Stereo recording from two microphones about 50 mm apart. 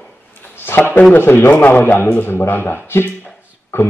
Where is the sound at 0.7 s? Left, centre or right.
Left.